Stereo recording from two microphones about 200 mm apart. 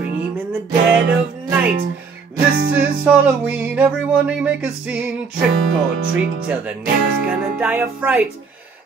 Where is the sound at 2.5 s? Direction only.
50° right (ahead or behind).